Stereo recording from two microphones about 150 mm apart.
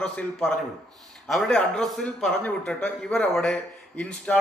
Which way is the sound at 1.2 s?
5° left (ahead or behind).